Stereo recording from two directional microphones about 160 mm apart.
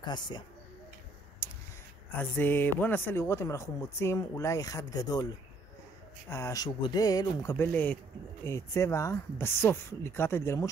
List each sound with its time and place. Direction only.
0.0 s speech: 30° left (ahead or behind)
1.4 s a sound: 20° left (ahead or behind)
2.1 s speech: 10° left (ahead or behind)
6.2 s speech: 20° left (ahead or behind)
7.5 s speech: 10° left (ahead or behind)